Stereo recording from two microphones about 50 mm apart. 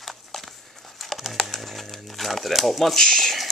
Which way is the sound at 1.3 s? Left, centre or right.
Centre.